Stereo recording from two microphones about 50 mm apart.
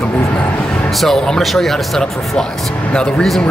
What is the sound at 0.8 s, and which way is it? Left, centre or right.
A man's voice, centre.